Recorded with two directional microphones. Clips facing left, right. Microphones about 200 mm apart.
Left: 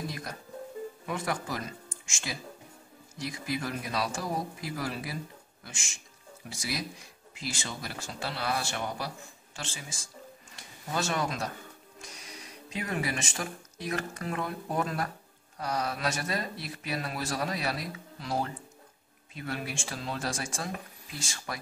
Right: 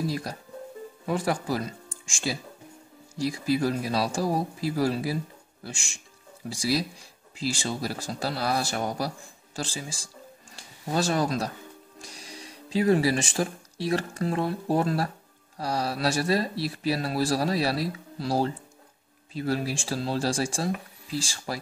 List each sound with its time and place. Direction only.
0.0 s speech: 30° right (ahead or behind)